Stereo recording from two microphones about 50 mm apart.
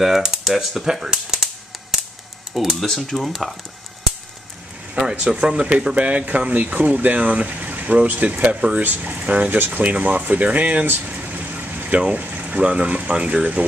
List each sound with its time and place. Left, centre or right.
0.0 s speech: centre
5.1 s speech: centre
11.1 s pump: right
12.0 s speech: right